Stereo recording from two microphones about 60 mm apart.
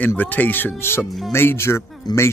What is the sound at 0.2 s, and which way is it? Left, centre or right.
Speech, left.